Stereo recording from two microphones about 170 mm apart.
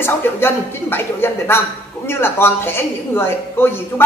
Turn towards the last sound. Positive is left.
turn(degrees=15)  # may be behind; listen again after turning